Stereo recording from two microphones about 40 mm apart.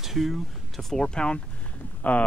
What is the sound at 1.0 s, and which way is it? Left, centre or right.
Speech, left.